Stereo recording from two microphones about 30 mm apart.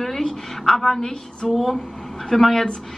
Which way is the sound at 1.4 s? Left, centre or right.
Centre.